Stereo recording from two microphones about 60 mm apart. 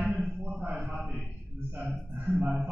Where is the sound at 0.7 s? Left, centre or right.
Centre.